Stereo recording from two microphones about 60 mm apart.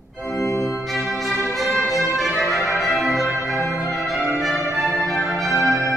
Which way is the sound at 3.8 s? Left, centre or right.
Centre.